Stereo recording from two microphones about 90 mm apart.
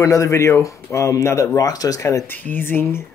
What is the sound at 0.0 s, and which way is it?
Speech, 35° left (ahead or behind).